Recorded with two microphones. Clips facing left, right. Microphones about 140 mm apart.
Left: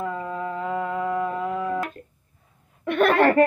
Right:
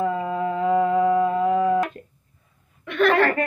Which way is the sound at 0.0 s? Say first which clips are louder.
Right 5 dB; 20° right (ahead or behind).